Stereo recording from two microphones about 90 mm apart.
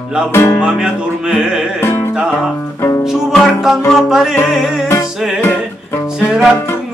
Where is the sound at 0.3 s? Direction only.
25° left (ahead or behind).